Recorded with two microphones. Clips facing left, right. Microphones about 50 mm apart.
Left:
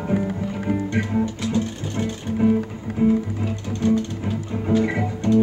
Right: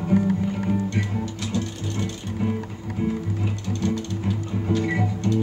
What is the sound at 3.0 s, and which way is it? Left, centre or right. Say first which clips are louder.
Music: left 8 dB; centre.